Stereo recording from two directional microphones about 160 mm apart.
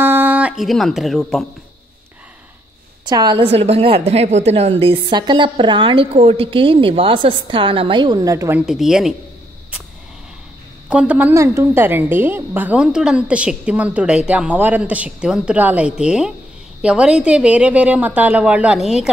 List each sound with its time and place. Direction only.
0.0 s speech: 10° right (ahead or behind)
3.1 s a woman's voice: 25° right (ahead or behind)
3.4 s a woman's voice: 40° right (ahead or behind); by 8.5 s 20° right (ahead or behind)
8.5 s speech: 5° right (ahead or behind)
10.9 s a woman's voice: 5° right (ahead or behind)